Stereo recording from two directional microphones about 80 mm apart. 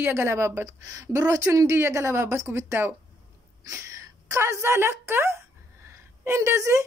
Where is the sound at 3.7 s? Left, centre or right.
Right.